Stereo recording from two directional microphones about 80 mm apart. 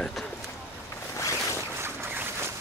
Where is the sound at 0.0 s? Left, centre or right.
Centre.